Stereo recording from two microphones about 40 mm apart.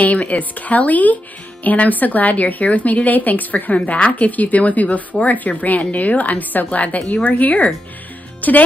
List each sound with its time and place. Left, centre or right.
0.0 s speech: left
3.7 s a woman's voice: left